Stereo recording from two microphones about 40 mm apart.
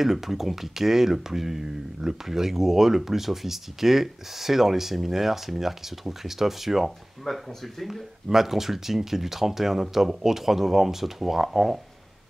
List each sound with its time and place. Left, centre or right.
0.0 s speech: centre